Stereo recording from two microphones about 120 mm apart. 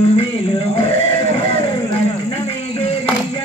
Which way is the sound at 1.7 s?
35° left (ahead or behind).